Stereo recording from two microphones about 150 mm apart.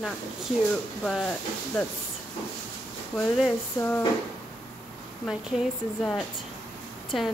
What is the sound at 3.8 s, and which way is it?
Speech, 15° left (ahead or behind).